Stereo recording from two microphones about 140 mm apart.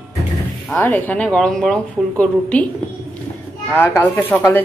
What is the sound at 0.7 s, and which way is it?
Speech, 10° left (ahead or behind).